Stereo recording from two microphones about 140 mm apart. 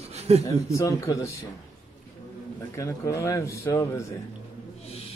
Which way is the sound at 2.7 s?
20° left (ahead or behind).